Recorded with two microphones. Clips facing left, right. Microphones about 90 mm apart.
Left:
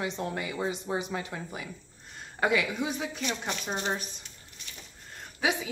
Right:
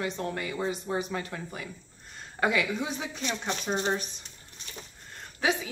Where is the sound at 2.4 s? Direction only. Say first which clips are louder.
Even; 5° left (ahead or behind).